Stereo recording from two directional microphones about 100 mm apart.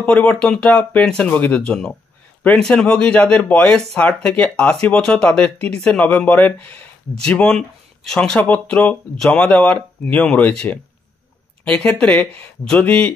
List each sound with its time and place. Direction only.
0.0 s speech: 15° left (ahead or behind)